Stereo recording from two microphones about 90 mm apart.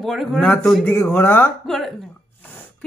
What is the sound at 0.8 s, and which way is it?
Speech, 25° left (ahead or behind).